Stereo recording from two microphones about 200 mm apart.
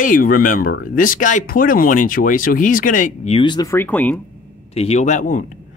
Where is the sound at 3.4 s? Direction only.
20° left (ahead or behind).